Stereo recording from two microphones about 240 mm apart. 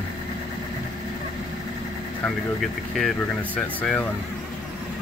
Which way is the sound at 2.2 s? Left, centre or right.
Centre.